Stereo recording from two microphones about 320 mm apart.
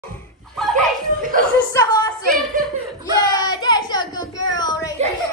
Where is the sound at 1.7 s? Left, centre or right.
Centre.